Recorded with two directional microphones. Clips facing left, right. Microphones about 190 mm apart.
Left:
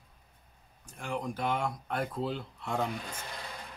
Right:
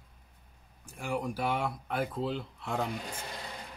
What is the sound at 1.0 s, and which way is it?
Speech, 10° right (ahead or behind).